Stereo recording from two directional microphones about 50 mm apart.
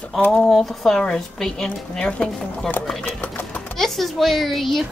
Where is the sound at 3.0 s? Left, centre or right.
Left.